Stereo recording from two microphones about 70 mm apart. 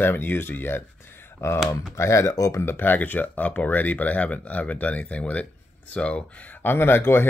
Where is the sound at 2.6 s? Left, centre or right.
Left.